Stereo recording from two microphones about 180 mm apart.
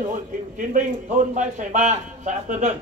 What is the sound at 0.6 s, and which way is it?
A man's voice, 45° right (ahead or behind).